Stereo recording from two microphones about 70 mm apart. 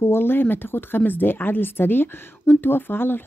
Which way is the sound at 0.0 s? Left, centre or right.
Left.